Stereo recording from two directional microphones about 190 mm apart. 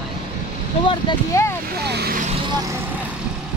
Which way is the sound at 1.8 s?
60° right (ahead or behind).